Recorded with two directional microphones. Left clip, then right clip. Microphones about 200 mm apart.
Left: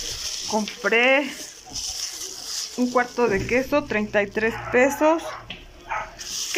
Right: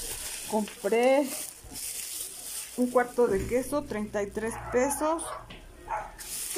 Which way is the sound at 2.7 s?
Centre (ahead or behind).